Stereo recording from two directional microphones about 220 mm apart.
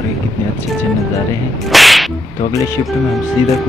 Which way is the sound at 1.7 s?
Centre (ahead or behind).